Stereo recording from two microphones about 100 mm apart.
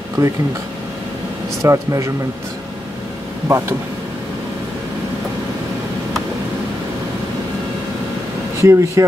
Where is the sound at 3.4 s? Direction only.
25° right (ahead or behind).